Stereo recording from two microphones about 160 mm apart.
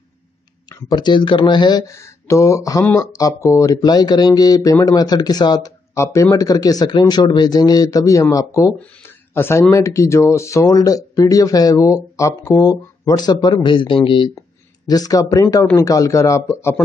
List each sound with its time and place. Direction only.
0.7 s speech: 25° left (ahead or behind)
8.7 s speech: 10° left (ahead or behind)